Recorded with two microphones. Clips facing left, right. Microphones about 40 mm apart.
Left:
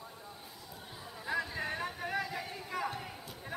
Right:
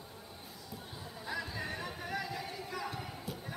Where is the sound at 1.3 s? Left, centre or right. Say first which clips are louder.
Left 4 dB; left.